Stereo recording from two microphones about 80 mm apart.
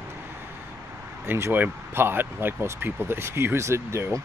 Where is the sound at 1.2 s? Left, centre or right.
Right.